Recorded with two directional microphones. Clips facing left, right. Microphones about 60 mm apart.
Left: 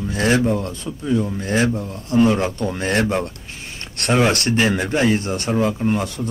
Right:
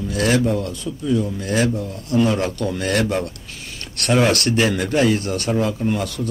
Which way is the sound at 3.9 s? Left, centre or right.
Left.